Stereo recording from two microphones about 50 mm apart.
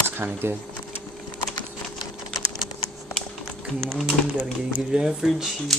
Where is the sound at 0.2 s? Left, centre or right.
Right.